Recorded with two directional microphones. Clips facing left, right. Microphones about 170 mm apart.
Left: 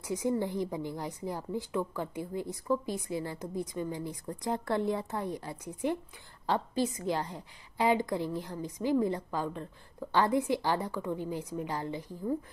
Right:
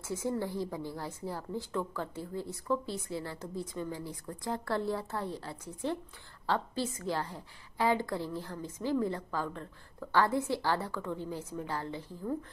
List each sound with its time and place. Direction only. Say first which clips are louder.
0.0 s a woman's voice: left 3 dB; 15° left (ahead or behind)